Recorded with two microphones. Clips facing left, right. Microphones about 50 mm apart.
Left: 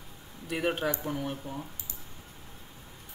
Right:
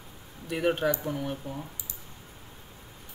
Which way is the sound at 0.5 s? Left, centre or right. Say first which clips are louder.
Right 3 dB; centre.